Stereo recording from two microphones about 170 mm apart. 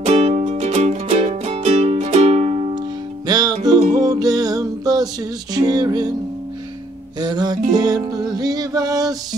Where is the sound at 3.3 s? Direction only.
25° right (ahead or behind).